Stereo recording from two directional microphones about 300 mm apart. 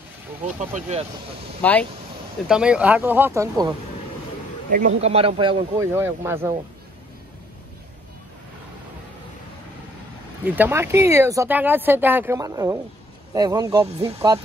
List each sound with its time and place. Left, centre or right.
0.6 s speech: right
1.6 s speech: centre
4.6 s speech: right; by 6.5 s centre
10.4 s speech: centre